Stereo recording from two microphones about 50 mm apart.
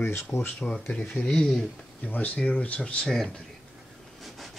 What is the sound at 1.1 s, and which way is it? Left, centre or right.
Speech, centre.